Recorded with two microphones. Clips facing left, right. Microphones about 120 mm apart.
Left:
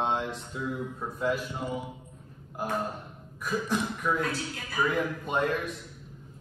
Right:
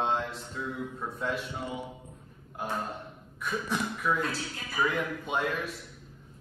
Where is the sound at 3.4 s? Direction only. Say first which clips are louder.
Left 2 dB; centre (ahead or behind).